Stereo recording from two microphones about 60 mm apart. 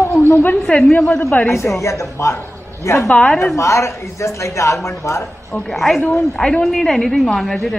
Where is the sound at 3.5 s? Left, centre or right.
Left.